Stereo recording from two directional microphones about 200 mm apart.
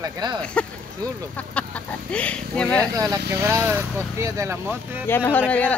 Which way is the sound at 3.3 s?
15° right (ahead or behind).